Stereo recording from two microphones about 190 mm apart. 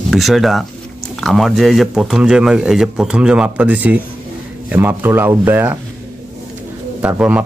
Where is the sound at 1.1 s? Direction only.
Centre (ahead or behind).